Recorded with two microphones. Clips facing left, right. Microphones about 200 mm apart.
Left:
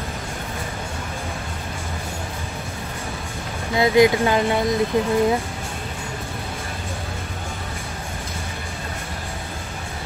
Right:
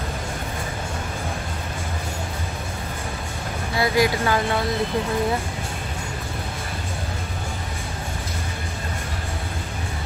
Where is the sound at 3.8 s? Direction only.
20° left (ahead or behind).